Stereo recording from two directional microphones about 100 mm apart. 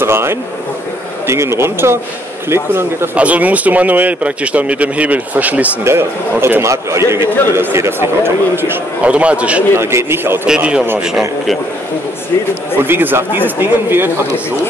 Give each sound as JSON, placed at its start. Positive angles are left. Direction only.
{"t": 0.0, "sound": "a man's voice", "side_deg": -25}
{"t": 3.2, "sound": "a man's voice", "side_deg": -15}
{"t": 9.8, "sound": "a man's voice", "side_deg": -25}
{"t": 10.4, "sound": "speech", "side_deg": -10}
{"t": 12.8, "sound": "a man's voice", "side_deg": -20}